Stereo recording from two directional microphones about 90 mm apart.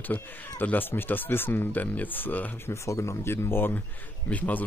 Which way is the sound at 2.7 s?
35° left (ahead or behind).